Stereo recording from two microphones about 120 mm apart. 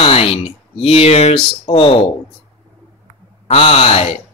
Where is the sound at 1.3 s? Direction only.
50° left (ahead or behind).